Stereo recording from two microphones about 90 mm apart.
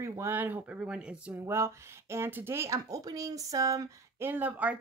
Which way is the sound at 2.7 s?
40° right (ahead or behind).